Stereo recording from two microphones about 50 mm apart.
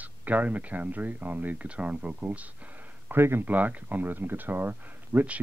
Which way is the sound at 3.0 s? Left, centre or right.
Right.